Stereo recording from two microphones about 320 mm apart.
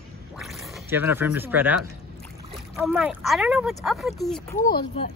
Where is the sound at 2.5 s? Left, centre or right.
Centre.